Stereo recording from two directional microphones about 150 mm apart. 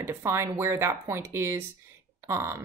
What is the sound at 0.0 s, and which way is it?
Speech, 15° right (ahead or behind).